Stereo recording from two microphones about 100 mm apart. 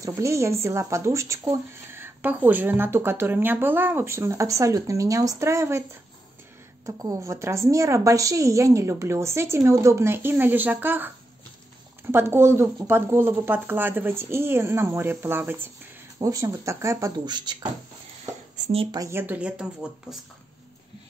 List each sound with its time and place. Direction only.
0.0 s speech: 30° right (ahead or behind)
16.2 s speech: 35° right (ahead or behind)
17.2 s speech: 45° right (ahead or behind)
19.0 s speech: 20° right (ahead or behind)